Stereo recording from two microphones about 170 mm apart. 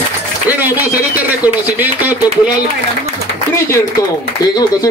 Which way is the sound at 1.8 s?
10° right (ahead or behind).